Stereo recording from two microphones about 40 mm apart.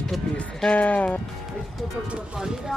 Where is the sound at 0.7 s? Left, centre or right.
Left.